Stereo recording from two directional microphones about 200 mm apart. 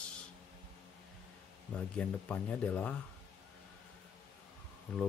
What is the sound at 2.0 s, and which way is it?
Speech, 5° left (ahead or behind).